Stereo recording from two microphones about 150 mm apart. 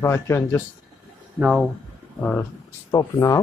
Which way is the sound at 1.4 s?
5° right (ahead or behind).